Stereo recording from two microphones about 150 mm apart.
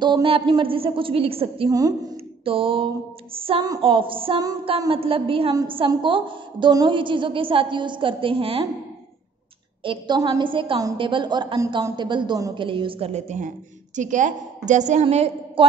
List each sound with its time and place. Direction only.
0.0 s a woman's voice: 35° right (ahead or behind)
1.7 s a woman's voice: 25° right (ahead or behind)
2.4 s a woman's voice: 35° right (ahead or behind)
9.8 s a woman's voice: 30° right (ahead or behind)